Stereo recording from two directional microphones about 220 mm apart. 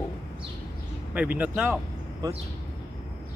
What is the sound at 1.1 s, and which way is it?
Speech, 5° right (ahead or behind).